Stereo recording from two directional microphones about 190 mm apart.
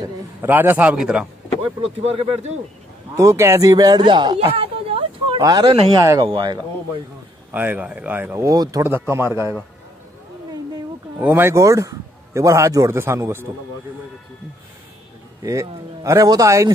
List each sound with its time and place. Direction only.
0.4 s speech: 10° right (ahead or behind)
1.8 s speech: 35° right (ahead or behind)
3.2 s speech: 15° right (ahead or behind)
7.5 s speech: 10° right (ahead or behind)
11.1 s speech: 10° right (ahead or behind)
15.4 s speech: 15° right (ahead or behind)